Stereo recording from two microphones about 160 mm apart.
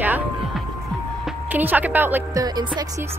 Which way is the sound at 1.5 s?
10° right (ahead or behind).